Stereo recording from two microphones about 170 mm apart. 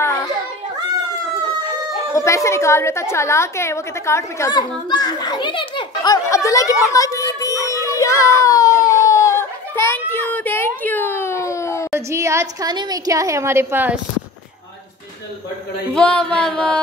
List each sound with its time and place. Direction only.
2.1 s a woman's voice: 15° left (ahead or behind)
6.2 s chatter: 20° left (ahead or behind)
11.9 s a woman's voice: 15° right (ahead or behind)
15.9 s a sound: 5° left (ahead or behind)